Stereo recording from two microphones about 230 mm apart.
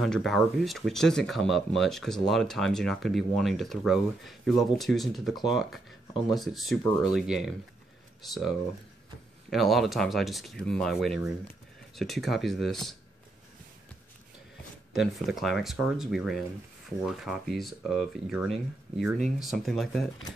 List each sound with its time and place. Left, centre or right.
0.0 s speech: centre
9.5 s speech: centre
15.0 s speech: centre